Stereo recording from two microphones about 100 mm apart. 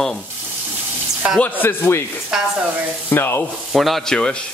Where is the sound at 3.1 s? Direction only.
25° left (ahead or behind).